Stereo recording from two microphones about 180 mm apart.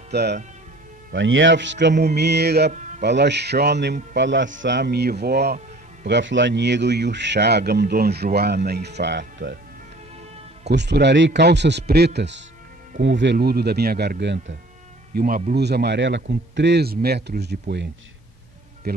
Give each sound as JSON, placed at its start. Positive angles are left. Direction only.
{"t": 0.1, "sound": "speech", "side_deg": -65}
{"t": 1.1, "sound": "speech", "side_deg": -90}
{"t": 6.0, "sound": "speech", "side_deg": -85}
{"t": 10.7, "sound": "a man's voice", "side_deg": -70}
{"t": 15.1, "sound": "a man's voice", "side_deg": -50}
{"t": 18.9, "sound": "a man's voice", "side_deg": -60}